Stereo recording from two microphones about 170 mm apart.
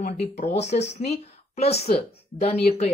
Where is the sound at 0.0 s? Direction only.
45° left (ahead or behind).